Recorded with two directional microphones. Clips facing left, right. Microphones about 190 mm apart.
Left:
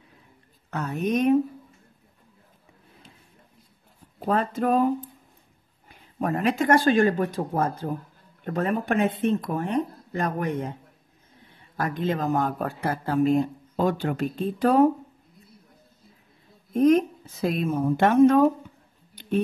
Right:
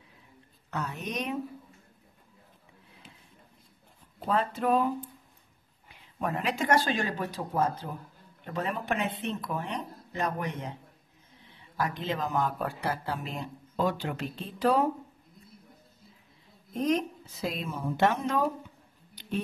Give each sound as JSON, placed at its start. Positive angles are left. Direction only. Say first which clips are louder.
{"t": 0.7, "sound": "a man's voice", "louder": "left 9 dB", "side_deg": 50}
{"t": 4.3, "sound": "a man's voice", "louder": "left 4 dB", "side_deg": 45}
{"t": 16.7, "sound": "a man's voice", "louder": "left 9 dB", "side_deg": 50}